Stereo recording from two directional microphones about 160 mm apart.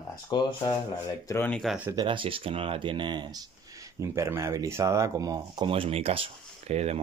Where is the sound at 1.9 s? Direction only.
30° right (ahead or behind).